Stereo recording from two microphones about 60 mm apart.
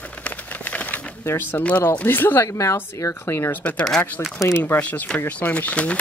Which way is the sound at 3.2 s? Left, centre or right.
Left.